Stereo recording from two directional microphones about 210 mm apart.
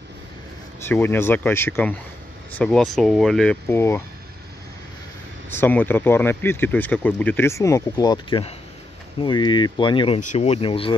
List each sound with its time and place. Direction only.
0.8 s speech: 10° left (ahead or behind)
5.5 s speech: 10° left (ahead or behind); by 11.0 s 25° left (ahead or behind)